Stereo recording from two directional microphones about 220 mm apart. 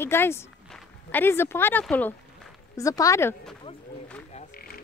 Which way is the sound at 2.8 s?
15° left (ahead or behind).